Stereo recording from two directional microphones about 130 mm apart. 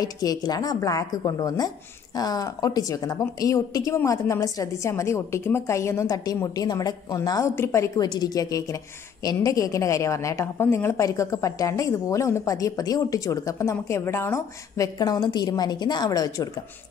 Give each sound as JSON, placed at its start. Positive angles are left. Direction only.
{"t": 0.0, "sound": "a woman's voice", "side_deg": 30}